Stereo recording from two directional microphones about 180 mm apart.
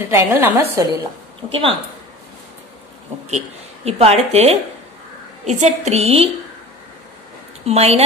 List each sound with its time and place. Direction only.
0.0 s a woman's voice: 10° right (ahead or behind)
1.5 s speech: 30° right (ahead or behind)
3.3 s speech: 35° right (ahead or behind)
7.6 s speech: 35° right (ahead or behind)